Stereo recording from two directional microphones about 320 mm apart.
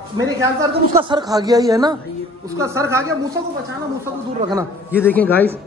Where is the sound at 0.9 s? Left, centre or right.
Centre.